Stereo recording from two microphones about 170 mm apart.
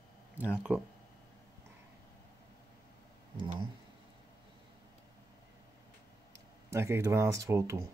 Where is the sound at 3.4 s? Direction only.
30° right (ahead or behind).